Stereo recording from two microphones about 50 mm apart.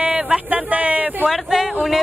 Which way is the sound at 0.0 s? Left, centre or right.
Right.